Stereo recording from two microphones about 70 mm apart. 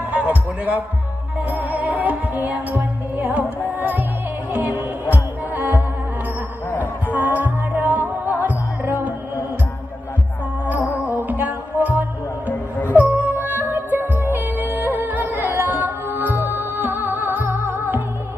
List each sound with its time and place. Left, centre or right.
0.1 s a sound: right
1.5 s music: right
6.8 s music: right
11.0 s music: right